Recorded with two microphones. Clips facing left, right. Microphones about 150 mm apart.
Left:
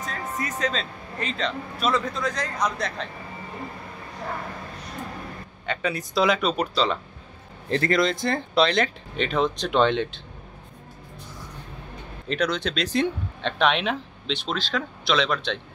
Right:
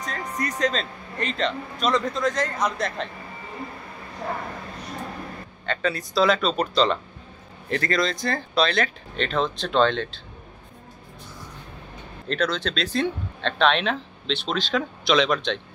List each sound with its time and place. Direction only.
0.0 s a man's voice: centre (ahead or behind)
5.7 s speech: 15° left (ahead or behind)
7.7 s speech: 25° left (ahead or behind)
9.1 s speech: 10° left (ahead or behind)
12.3 s a man's voice: 15° left (ahead or behind)